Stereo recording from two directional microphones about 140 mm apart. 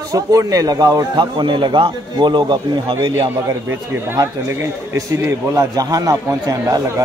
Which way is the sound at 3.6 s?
20° right (ahead or behind).